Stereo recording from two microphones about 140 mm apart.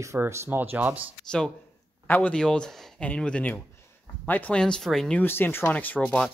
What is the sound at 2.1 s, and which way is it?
Speech, 10° left (ahead or behind).